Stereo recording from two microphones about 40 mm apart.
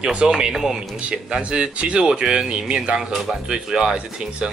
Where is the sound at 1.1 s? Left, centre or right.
Right.